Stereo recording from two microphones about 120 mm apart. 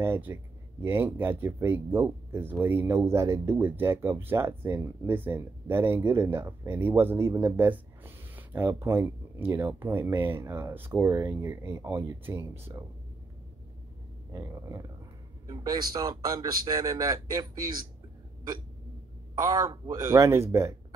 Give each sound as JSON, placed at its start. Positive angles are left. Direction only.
{"t": 0.0, "sound": "speech", "side_deg": -20}
{"t": 14.3, "sound": "speech", "side_deg": -25}
{"t": 19.4, "sound": "speech", "side_deg": -30}